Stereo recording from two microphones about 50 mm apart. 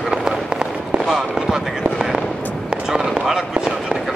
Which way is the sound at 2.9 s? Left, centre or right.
Centre.